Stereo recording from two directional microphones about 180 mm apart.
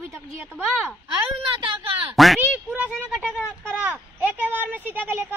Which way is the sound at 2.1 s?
Centre (ahead or behind).